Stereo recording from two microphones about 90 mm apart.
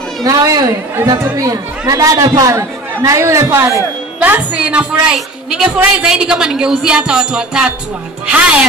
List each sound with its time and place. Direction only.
0.2 s a woman's voice: 40° right (ahead or behind)
4.2 s speech: 15° right (ahead or behind)